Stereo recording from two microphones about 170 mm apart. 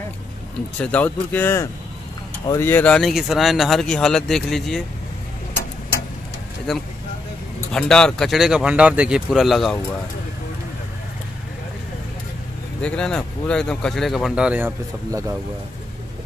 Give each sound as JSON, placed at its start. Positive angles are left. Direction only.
{"t": 0.7, "sound": "speech", "side_deg": 10}
{"t": 6.7, "sound": "speech", "side_deg": 5}
{"t": 12.8, "sound": "speech", "side_deg": 5}